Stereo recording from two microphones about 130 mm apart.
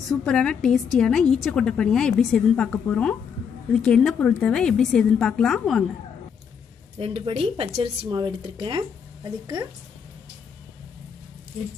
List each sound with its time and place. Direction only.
0.2 s a woman's voice: 5° left (ahead or behind)
7.0 s speech: 45° right (ahead or behind)